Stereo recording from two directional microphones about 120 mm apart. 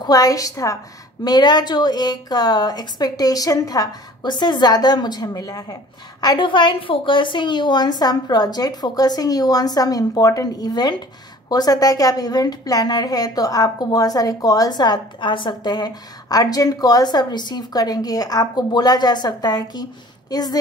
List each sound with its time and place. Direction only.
0.0 s a woman's voice: 30° left (ahead or behind)